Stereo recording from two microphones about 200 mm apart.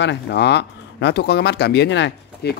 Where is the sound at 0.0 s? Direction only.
60° left (ahead or behind).